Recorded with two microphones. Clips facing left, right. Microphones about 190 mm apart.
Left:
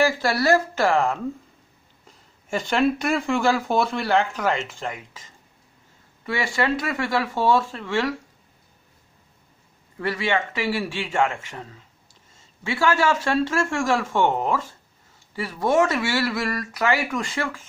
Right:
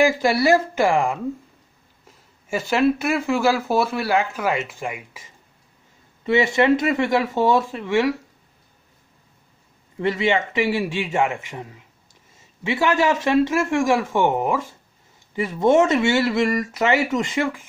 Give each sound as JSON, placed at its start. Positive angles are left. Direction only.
{"t": 0.0, "sound": "speech", "side_deg": -15}
{"t": 6.2, "sound": "speech", "side_deg": -20}
{"t": 9.9, "sound": "speech", "side_deg": -20}